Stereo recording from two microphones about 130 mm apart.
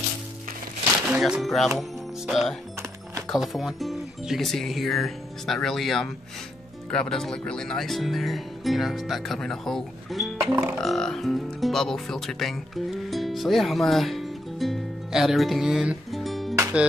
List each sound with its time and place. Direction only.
1.1 s speech: 5° right (ahead or behind)
10.5 s music: 15° right (ahead or behind)
10.8 s speech: 5° left (ahead or behind)